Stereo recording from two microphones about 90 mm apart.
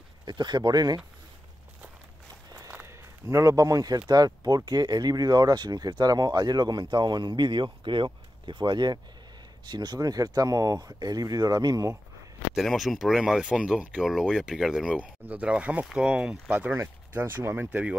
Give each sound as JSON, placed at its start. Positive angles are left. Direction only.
{"t": 0.2, "sound": "speech", "side_deg": -55}
{"t": 2.7, "sound": "a sound", "side_deg": -30}
{"t": 4.1, "sound": "speech", "side_deg": -45}
{"t": 12.5, "sound": "speech", "side_deg": 0}
{"t": 16.4, "sound": "speech", "side_deg": -20}